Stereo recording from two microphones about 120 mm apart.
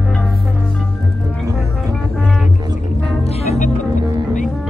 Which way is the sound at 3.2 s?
60° left (ahead or behind).